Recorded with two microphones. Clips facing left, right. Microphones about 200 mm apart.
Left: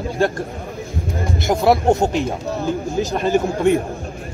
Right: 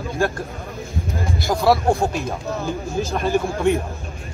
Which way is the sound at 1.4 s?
20° left (ahead or behind).